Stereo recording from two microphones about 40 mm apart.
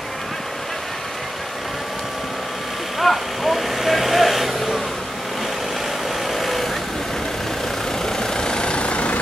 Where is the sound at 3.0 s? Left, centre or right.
Centre.